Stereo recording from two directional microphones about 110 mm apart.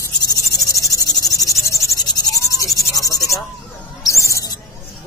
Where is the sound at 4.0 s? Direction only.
30° left (ahead or behind).